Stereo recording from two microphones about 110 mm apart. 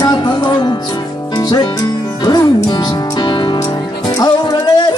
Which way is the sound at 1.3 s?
35° left (ahead or behind).